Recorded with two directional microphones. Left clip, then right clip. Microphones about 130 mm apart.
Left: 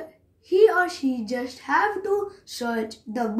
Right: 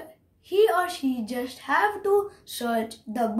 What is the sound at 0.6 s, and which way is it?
Speech, 20° right (ahead or behind).